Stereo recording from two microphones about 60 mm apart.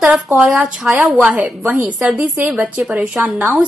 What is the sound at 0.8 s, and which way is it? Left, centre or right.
Speech, centre.